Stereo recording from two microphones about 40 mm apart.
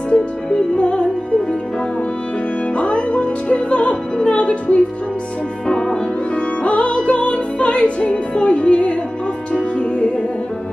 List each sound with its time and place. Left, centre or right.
0.1 s music: centre
2.7 s music: left
5.7 s music: centre